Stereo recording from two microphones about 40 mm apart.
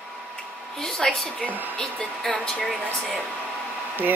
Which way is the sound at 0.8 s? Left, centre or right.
Centre.